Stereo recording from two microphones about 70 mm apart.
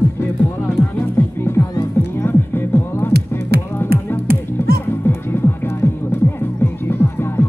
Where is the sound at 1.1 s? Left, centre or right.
Left.